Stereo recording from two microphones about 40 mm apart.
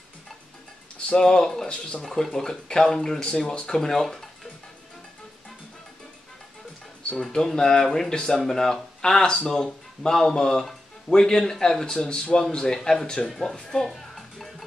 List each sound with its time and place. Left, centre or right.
1.0 s speech: centre
7.2 s speech: centre
13.6 s speech: centre
13.8 s music: centre